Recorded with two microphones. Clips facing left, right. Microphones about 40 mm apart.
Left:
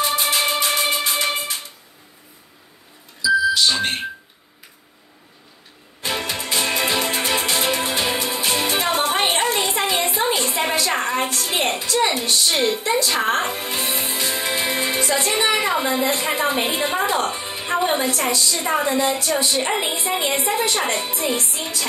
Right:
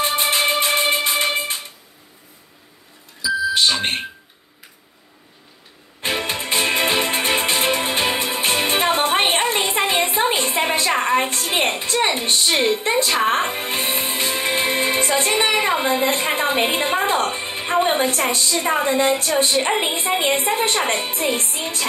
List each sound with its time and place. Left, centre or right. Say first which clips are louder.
0.0 s music: right 1 dB; right
5.9 s music: right 2 dB; right
11.8 s a woman's voice: even; right